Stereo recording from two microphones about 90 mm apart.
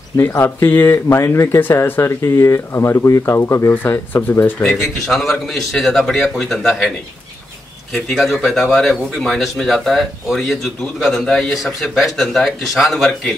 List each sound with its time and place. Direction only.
0.4 s speech: 20° left (ahead or behind)
4.6 s speech: centre (ahead or behind)
7.9 s speech: centre (ahead or behind)